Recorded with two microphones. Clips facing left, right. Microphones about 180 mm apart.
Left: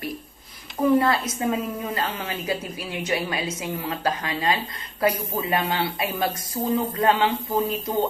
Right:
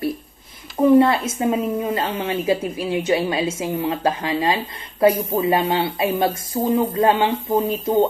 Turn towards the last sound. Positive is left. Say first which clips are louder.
# right 4 dB
turn(degrees=-25)  # may be behind; listen again after turning